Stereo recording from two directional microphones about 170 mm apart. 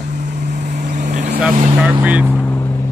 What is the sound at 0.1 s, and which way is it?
Vehicle, 45° right (ahead or behind).